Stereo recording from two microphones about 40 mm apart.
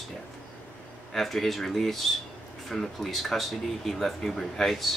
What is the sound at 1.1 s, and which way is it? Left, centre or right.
Speech, centre.